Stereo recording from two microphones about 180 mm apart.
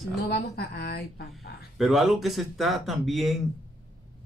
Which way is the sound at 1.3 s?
Centre (ahead or behind).